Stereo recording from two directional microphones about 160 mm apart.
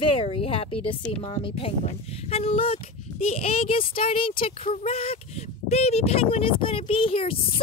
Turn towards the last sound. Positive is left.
turn(degrees=35)  # may be behind; listen again after turning